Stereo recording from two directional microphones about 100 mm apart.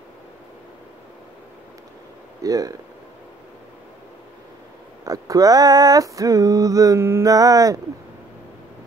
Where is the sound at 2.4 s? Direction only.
35° right (ahead or behind).